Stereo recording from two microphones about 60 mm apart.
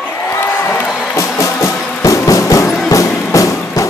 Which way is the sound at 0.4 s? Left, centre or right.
Left.